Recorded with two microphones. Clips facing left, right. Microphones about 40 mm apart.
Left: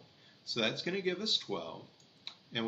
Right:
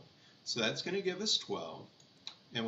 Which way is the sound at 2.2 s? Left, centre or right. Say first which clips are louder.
Left 2 dB; centre.